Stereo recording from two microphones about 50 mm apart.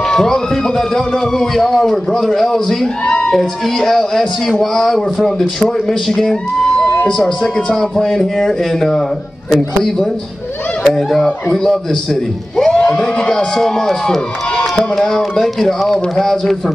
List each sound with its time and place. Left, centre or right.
0.1 s speech: centre
12.7 s speech: left
13.6 s speech: centre